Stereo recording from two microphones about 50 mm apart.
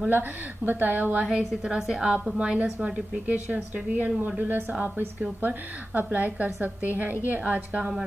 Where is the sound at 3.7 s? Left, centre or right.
Right.